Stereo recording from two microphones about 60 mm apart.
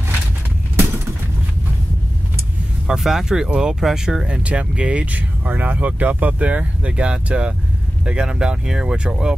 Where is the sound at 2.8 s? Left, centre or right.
Centre.